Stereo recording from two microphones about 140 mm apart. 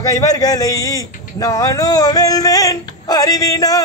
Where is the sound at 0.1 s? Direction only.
25° left (ahead or behind).